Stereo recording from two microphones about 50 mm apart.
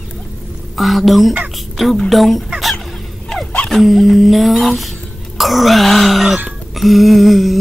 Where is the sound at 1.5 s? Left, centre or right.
Centre.